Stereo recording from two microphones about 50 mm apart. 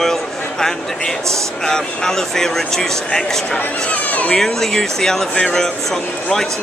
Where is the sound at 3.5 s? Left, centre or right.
Left.